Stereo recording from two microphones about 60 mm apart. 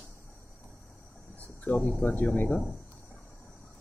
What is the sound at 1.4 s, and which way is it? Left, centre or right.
Cricket, left.